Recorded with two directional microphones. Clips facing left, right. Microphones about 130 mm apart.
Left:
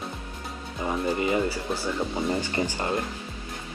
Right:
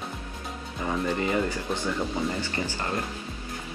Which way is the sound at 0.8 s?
10° left (ahead or behind).